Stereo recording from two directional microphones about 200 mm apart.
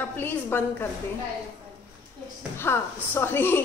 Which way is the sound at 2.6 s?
10° left (ahead or behind).